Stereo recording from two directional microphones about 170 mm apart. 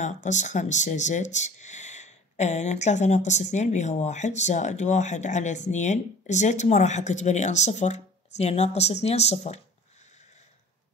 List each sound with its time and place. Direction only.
0.0 s speech: 45° left (ahead or behind)